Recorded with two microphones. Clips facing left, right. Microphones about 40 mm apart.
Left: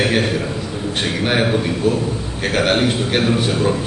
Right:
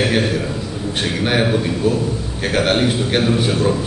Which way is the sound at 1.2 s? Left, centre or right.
Centre.